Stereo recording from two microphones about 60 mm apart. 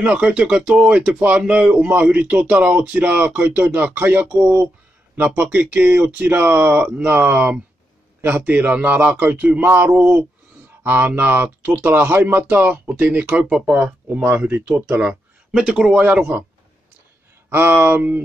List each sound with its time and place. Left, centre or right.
0.0 s speech: right
15.0 s speech: centre
17.5 s speech: right